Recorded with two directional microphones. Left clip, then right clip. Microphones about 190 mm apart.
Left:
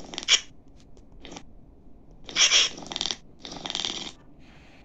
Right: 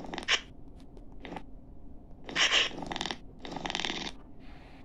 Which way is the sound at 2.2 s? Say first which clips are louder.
Left 6 dB; 20° right (ahead or behind).